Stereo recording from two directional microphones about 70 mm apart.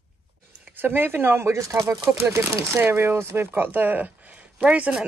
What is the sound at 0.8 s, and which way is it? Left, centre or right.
Speech, right.